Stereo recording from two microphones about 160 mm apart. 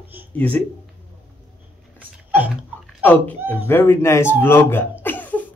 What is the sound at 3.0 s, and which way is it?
Speech, 10° left (ahead or behind).